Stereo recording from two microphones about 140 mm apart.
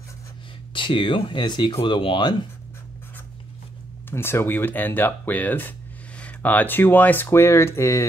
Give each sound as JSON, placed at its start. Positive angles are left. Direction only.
{"t": 0.7, "sound": "speech", "side_deg": 35}
{"t": 4.1, "sound": "speech", "side_deg": 15}